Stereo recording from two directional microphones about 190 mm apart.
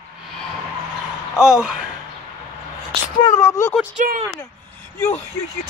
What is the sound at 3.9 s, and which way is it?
Speech, 40° right (ahead or behind).